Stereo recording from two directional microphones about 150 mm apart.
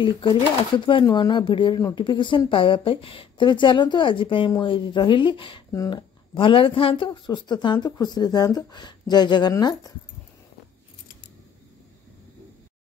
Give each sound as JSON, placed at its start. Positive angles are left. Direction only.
{"t": 0.0, "sound": "a woman's voice", "side_deg": 35}